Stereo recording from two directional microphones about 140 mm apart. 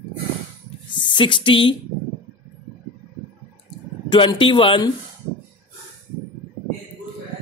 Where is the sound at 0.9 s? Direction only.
35° left (ahead or behind).